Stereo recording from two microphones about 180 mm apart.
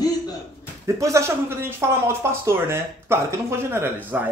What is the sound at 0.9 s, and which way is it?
Speech, 15° right (ahead or behind).